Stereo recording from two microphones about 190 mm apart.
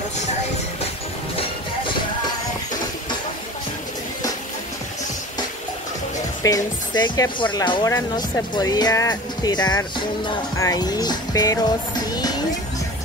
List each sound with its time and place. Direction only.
6.4 s speech: 20° left (ahead or behind)